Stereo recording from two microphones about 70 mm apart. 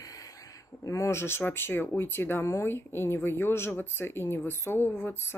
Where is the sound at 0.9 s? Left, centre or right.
Left.